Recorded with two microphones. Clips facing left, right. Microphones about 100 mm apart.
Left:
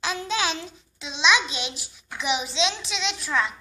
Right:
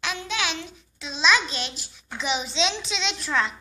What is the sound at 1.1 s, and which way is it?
A child's voice, 15° left (ahead or behind).